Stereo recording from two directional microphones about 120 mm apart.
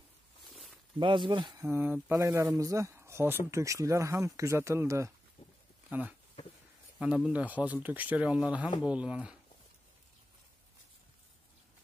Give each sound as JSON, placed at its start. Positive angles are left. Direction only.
{"t": 0.9, "sound": "speech", "side_deg": -40}
{"t": 1.6, "sound": "speech", "side_deg": -20}
{"t": 5.9, "sound": "speech", "side_deg": -10}
{"t": 7.2, "sound": "speech", "side_deg": -10}